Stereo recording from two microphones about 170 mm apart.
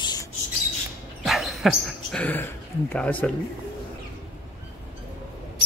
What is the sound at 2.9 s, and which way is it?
Speech, 10° left (ahead or behind).